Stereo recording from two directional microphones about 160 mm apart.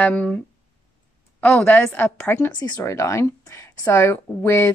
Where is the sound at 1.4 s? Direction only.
5° left (ahead or behind).